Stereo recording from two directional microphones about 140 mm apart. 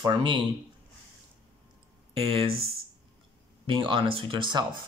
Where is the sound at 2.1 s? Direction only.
45° right (ahead or behind).